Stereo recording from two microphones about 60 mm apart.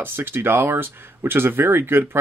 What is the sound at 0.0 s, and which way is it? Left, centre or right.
Speech, right.